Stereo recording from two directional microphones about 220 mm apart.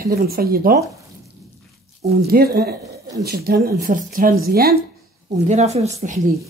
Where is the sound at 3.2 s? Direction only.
45° right (ahead or behind).